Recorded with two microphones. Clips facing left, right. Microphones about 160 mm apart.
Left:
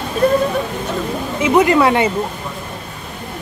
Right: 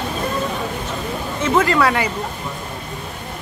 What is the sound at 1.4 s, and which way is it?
Speech, 15° left (ahead or behind).